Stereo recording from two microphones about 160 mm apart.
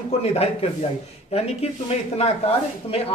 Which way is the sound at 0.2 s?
40° left (ahead or behind).